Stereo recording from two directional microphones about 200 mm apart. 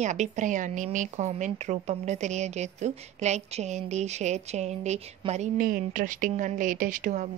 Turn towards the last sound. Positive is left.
turn(degrees=-40)  # may be behind; listen again after turning